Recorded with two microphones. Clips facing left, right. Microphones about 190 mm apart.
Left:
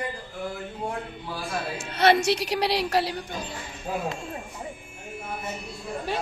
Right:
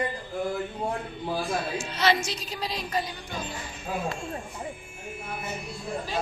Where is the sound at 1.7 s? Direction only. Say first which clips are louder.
Left 6 dB; 60° left (ahead or behind).